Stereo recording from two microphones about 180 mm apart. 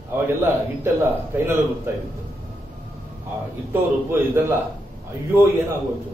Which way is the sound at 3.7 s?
10° right (ahead or behind).